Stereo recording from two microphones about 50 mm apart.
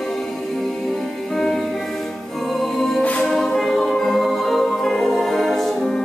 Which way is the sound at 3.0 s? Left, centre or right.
Left.